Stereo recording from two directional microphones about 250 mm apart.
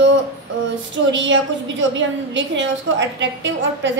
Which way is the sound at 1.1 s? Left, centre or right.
Right.